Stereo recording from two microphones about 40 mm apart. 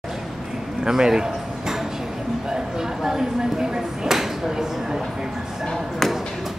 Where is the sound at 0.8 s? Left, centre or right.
Centre.